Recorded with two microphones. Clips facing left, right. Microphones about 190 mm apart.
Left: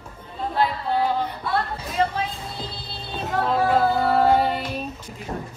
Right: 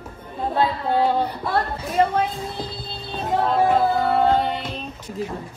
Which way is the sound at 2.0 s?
50° right (ahead or behind).